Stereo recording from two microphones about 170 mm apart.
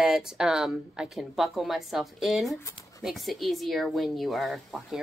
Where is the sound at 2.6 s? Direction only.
15° left (ahead or behind).